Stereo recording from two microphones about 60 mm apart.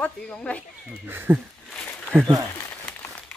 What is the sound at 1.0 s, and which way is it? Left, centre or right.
Speech, right.